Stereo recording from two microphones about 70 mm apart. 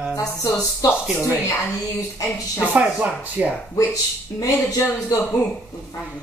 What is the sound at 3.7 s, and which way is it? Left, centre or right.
Speech, left.